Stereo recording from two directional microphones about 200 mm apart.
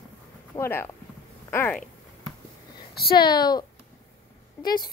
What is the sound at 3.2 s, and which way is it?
Speech, 20° left (ahead or behind).